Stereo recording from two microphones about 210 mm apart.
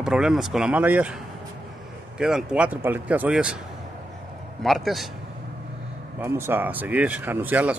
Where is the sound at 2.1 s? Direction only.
5° right (ahead or behind).